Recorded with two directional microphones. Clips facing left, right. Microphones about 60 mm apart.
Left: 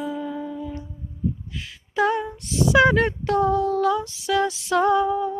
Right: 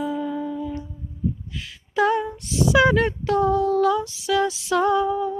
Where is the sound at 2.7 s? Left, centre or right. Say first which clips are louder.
Left 1 dB; left.